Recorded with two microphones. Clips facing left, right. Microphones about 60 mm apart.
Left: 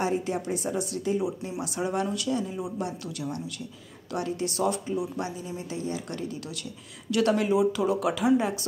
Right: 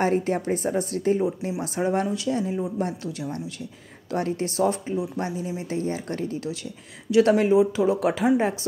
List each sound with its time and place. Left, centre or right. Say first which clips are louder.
0.0 s a woman's voice: right 5 dB; right